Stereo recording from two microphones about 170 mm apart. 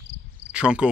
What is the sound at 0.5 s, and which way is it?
Cricket, 5° right (ahead or behind).